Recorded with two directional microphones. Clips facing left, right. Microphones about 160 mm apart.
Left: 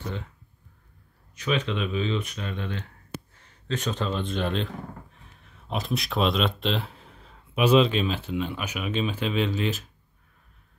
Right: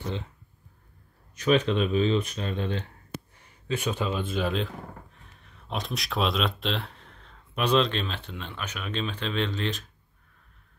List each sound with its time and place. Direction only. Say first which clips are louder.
1.3 s speech: right 4 dB; 40° right (ahead or behind)
3.3 s speech: right 1 dB; 10° right (ahead or behind); by 9.8 s 5° left (ahead or behind)